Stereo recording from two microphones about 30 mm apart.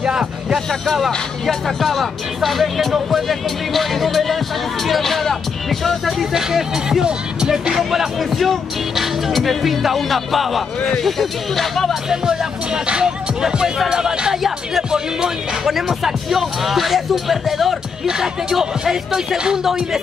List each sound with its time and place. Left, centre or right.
0.0 s speech: right
1.4 s speech: centre
6.3 s speech: centre
7.1 s speech: right
7.5 s speech: centre
8.2 s speech: centre
12.1 s speech: right
14.3 s speech: centre
18.0 s speech: centre